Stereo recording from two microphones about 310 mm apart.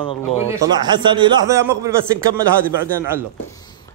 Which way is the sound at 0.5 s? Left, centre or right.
Centre.